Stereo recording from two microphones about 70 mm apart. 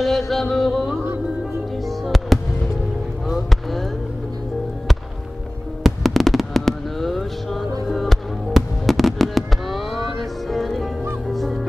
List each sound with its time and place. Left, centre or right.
0.0 s music: centre
3.3 s a sound: centre
5.9 s fireworks: centre
7.9 s music: centre